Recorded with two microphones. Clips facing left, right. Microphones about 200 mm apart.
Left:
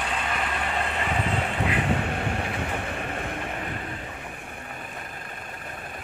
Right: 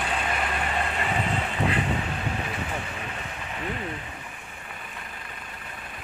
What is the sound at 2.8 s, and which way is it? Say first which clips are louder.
Vehicle: left 5 dB; 50° left (ahead or behind).